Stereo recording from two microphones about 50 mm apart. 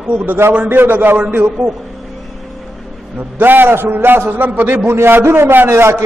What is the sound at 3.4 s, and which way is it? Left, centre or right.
A man's voice, right.